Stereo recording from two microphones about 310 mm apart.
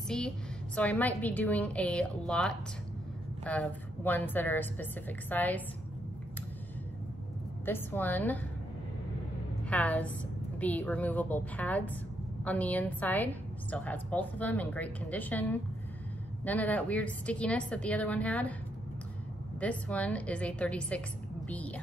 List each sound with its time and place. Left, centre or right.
0.7 s a woman's voice: centre
7.6 s a woman's voice: centre
9.7 s a woman's voice: centre
19.6 s a woman's voice: centre